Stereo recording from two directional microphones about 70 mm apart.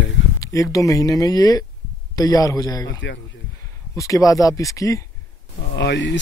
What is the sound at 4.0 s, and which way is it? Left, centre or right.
Speech, left.